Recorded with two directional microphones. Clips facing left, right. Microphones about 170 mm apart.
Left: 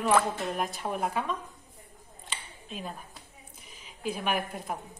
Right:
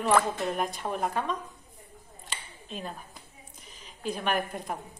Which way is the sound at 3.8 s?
5° left (ahead or behind).